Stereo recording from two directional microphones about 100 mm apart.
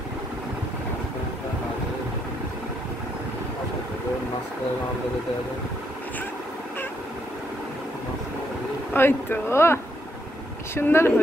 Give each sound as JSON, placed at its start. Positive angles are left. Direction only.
{"t": 8.9, "sound": "speech", "side_deg": 25}